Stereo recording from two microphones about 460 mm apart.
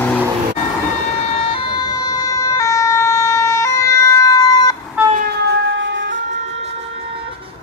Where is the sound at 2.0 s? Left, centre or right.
Centre.